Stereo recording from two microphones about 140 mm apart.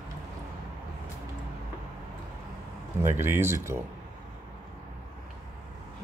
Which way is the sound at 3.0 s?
15° right (ahead or behind).